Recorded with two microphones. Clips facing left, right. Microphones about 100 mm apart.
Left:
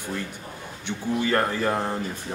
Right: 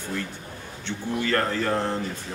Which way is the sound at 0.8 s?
15° left (ahead or behind).